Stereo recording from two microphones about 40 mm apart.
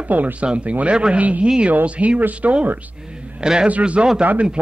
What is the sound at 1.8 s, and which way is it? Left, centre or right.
Speech, right.